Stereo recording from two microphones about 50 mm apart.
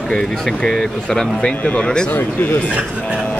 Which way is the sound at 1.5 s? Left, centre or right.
Left.